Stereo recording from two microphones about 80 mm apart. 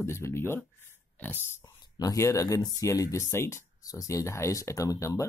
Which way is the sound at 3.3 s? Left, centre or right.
Left.